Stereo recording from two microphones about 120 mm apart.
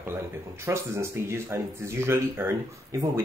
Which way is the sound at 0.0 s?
20° right (ahead or behind).